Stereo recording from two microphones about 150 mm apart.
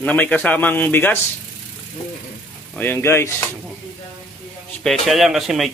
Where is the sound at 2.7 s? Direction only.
15° left (ahead or behind).